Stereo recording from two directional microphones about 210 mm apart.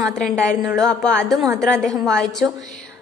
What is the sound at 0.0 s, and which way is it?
A woman's voice, centre (ahead or behind).